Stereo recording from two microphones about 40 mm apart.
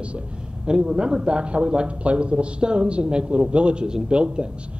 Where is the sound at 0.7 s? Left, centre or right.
Right.